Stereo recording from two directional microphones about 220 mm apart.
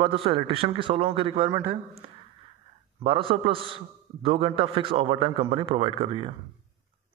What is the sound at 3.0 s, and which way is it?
A man's voice, 25° right (ahead or behind).